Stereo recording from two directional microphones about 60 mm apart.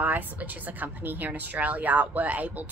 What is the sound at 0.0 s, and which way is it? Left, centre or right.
Speech, right.